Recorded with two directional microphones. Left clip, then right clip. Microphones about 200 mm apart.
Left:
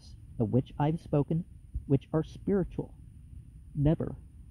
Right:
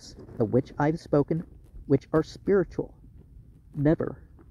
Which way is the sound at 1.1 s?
20° left (ahead or behind).